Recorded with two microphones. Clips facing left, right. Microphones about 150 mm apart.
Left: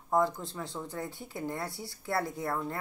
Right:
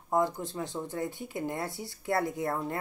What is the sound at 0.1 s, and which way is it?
Speech, 20° right (ahead or behind).